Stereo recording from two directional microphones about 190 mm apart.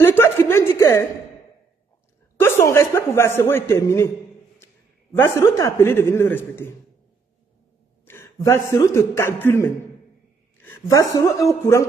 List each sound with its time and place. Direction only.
0.0 s a sound: 10° left (ahead or behind)
2.3 s a man's voice: 15° left (ahead or behind)
5.1 s a man's voice: 15° left (ahead or behind)
8.0 s a man's voice: 15° left (ahead or behind)